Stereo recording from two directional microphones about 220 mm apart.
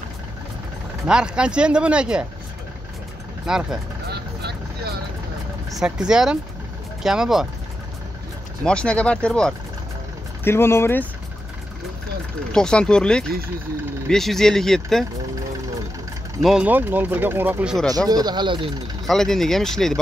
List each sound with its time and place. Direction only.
1.0 s speech: 5° right (ahead or behind)
3.4 s speech: 5° right (ahead or behind)
4.1 s vehicle: 50° right (ahead or behind)
5.7 s speech: 5° right (ahead or behind)
8.6 s speech: 5° left (ahead or behind)
12.5 s speech: 5° left (ahead or behind)
16.3 s speech: centre (ahead or behind)
17.8 s speech: 15° right (ahead or behind)
19.0 s speech: centre (ahead or behind)